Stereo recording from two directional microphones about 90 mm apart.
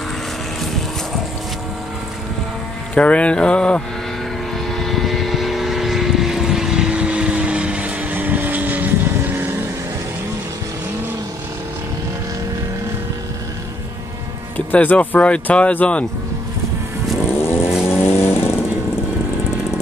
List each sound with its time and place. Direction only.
2.9 s speech: 15° left (ahead or behind)
4.7 s vehicle: centre (ahead or behind); by 9.6 s 20° right (ahead or behind)
14.7 s speech: 15° left (ahead or behind)
17.4 s vehicle: 25° left (ahead or behind)